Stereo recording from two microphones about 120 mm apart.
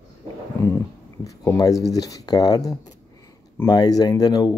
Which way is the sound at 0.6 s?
25° left (ahead or behind).